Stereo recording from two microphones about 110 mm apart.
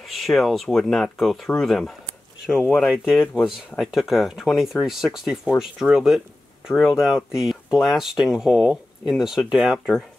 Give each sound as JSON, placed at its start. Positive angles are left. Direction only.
{"t": 0.0, "sound": "speech", "side_deg": 0}